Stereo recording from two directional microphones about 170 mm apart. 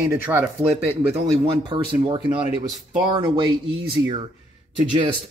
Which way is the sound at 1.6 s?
30° right (ahead or behind).